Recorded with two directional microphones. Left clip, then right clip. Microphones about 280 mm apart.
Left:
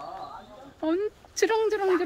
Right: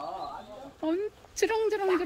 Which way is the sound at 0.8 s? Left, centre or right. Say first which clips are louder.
Left 3 dB; centre.